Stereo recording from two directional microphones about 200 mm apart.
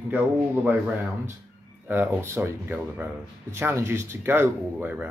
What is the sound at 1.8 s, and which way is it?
Speech, 10° right (ahead or behind).